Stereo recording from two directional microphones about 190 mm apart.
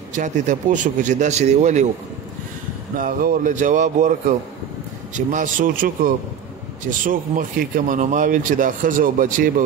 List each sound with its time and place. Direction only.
0.1 s speech: 40° right (ahead or behind)
3.0 s speech: 45° right (ahead or behind)